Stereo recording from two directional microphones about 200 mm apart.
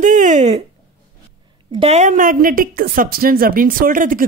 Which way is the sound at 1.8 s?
35° right (ahead or behind).